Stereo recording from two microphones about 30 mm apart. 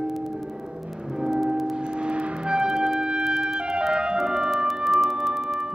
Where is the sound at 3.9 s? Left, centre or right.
Right.